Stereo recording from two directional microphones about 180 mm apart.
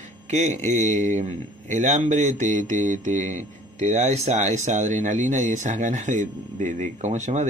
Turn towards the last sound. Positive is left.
turn(degrees=-40)  # may be behind; listen again after turning